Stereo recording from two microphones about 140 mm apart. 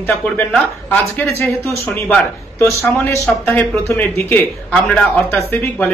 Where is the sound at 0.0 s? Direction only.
15° left (ahead or behind).